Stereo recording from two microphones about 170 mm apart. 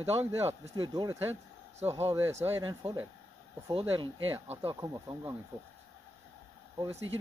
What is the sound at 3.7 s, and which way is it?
Speech, 30° right (ahead or behind).